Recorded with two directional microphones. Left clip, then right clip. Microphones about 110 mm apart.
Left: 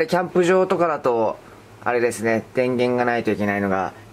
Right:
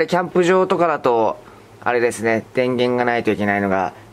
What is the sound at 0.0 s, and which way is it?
Speech, 25° right (ahead or behind).